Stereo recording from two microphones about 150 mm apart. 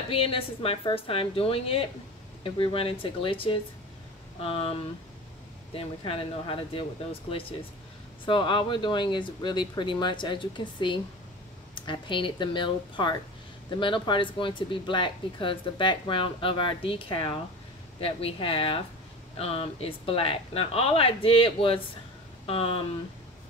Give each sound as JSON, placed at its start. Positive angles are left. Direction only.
{"t": 0.1, "sound": "speech", "side_deg": 40}
{"t": 5.8, "sound": "speech", "side_deg": 40}